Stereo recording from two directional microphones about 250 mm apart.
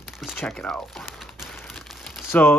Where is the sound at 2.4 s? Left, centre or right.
Centre.